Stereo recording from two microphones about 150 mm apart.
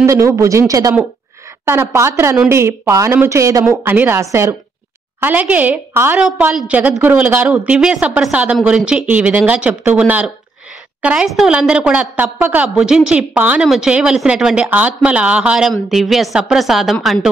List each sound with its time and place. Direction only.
0.0 s a woman's voice: 20° right (ahead or behind); by 17.3 s centre (ahead or behind)